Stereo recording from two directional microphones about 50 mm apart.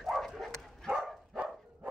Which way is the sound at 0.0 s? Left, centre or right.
Centre.